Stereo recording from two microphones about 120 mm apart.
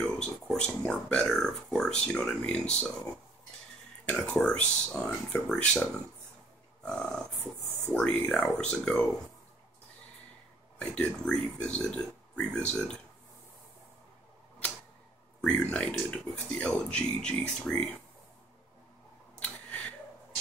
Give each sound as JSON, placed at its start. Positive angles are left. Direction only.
{"t": 0.0, "sound": "speech", "side_deg": 5}
{"t": 4.0, "sound": "speech", "side_deg": 10}
{"t": 6.8, "sound": "a sound", "side_deg": 5}
{"t": 7.9, "sound": "speech", "side_deg": 10}
{"t": 10.8, "sound": "speech", "side_deg": 10}
{"t": 15.4, "sound": "speech", "side_deg": 5}
{"t": 19.4, "sound": "a sound", "side_deg": 10}